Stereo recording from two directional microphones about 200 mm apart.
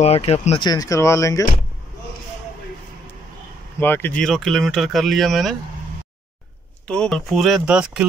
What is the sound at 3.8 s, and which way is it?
Speech, 10° left (ahead or behind).